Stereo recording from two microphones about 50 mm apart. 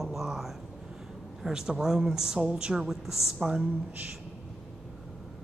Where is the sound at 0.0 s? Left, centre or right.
Centre.